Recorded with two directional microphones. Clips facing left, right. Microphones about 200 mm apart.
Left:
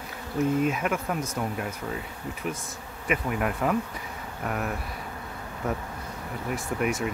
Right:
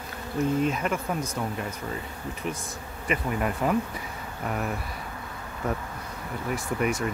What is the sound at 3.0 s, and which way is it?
Speech, 5° left (ahead or behind).